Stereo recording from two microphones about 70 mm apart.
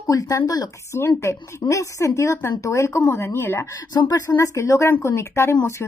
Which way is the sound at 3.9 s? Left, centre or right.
Left.